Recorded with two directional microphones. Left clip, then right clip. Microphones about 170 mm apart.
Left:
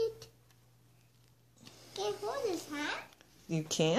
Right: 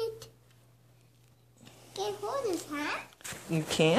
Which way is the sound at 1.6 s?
5° left (ahead or behind).